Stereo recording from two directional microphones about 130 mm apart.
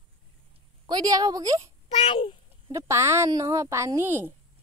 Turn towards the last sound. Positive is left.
turn(degrees=-20)  # may be behind; listen again after turning